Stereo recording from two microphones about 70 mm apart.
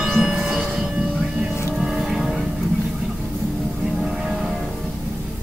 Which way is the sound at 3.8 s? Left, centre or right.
Centre.